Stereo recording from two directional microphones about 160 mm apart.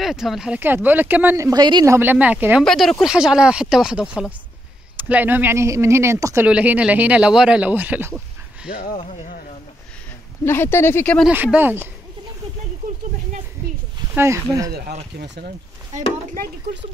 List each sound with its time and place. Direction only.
0.0 s speech: centre (ahead or behind); by 2.0 s 25° right (ahead or behind)
2.0 s speech: 10° right (ahead or behind)
2.6 s speech: 5° left (ahead or behind)
8.9 s speech: 40° left (ahead or behind)
10.4 s speech: 15° left (ahead or behind)
11.3 s speech: 10° right (ahead or behind)
14.1 s speech: 15° right (ahead or behind)
15.1 s speech: 90° right